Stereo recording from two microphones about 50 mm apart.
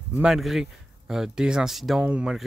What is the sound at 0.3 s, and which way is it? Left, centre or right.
Speech, centre.